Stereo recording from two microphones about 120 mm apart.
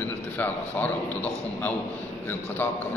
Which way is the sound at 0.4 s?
15° left (ahead or behind).